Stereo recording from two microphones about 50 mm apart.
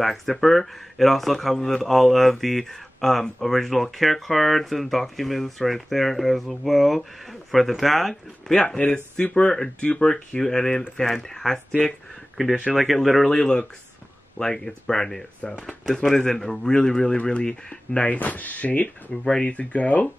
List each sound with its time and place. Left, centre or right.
0.0 s speech: centre
12.7 s speech: centre
13.3 s speech: centre
18.1 s speech: left